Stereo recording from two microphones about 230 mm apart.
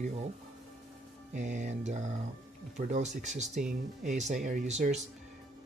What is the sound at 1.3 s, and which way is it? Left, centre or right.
Speech, right.